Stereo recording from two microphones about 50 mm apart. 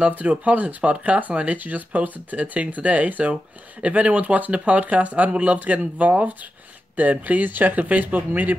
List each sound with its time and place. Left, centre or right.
0.2 s speech: right